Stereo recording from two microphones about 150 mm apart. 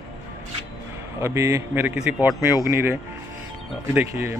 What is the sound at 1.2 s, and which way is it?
A man's voice, 20° right (ahead or behind).